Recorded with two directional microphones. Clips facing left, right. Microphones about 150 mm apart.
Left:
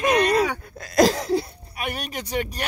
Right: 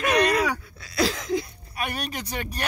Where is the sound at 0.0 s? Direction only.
25° left (ahead or behind).